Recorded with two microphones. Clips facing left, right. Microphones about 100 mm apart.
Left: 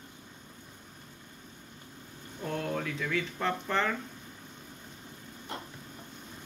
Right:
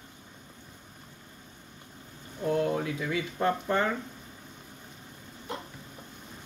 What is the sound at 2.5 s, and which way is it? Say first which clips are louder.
Speech: right 6 dB; 20° right (ahead or behind).